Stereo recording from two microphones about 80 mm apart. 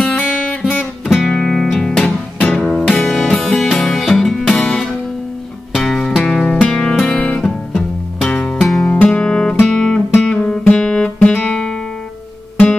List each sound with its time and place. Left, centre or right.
0.5 s guitar: centre
1.0 s music: centre
1.3 s music: centre
8.8 s guitar: centre
11.1 s music: centre